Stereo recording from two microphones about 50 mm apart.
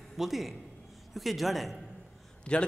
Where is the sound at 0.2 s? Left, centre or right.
Centre.